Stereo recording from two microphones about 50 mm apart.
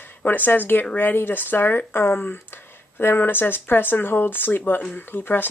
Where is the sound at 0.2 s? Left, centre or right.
Left.